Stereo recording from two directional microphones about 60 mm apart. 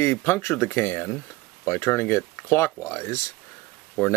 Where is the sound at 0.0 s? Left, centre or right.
Left.